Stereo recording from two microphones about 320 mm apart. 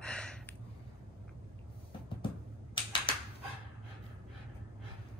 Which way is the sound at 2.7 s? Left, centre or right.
Centre.